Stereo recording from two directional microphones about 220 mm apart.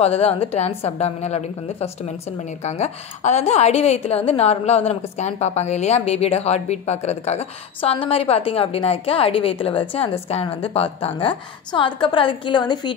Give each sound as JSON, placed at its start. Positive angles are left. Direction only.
{"t": 0.0, "sound": "a woman's voice", "side_deg": 25}